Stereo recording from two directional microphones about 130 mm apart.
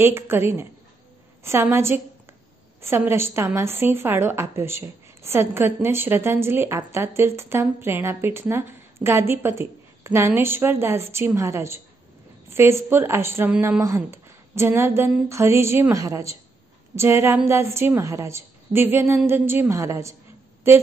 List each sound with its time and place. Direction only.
0.0 s a woman's voice: 20° right (ahead or behind)